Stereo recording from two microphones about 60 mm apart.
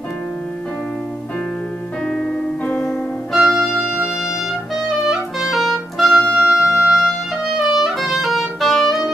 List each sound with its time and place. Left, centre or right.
2.0 s piano: centre
3.3 s organ: centre
5.0 s clarinet: centre
6.3 s music: centre